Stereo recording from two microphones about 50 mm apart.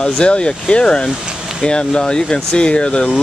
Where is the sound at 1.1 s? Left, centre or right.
Centre.